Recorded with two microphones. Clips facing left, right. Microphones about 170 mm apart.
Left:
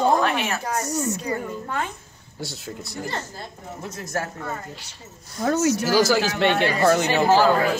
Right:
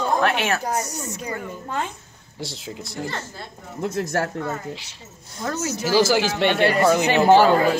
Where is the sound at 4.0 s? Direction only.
70° right (ahead or behind).